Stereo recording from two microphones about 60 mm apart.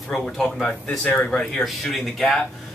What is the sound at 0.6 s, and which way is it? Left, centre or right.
Speech, centre.